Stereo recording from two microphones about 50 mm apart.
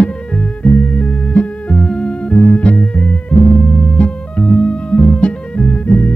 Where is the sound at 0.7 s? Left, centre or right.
Left.